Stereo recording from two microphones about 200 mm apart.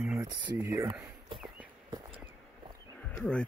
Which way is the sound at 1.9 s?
20° right (ahead or behind).